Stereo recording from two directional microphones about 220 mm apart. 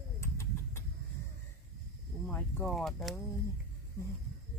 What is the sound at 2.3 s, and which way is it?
Speech, 5° left (ahead or behind).